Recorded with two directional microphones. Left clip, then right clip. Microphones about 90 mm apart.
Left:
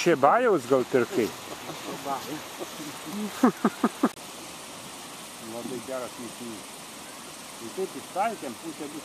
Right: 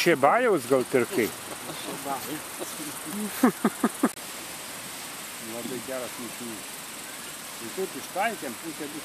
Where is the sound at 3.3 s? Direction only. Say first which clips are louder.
Even; 10° right (ahead or behind).